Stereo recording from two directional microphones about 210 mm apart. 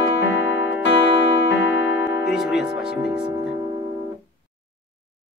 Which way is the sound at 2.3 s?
5° right (ahead or behind).